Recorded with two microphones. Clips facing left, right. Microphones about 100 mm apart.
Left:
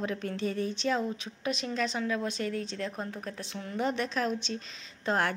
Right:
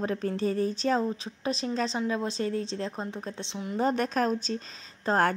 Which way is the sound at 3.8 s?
40° right (ahead or behind).